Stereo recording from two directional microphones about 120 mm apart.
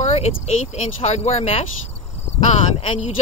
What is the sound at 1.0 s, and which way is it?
Speech, 60° left (ahead or behind).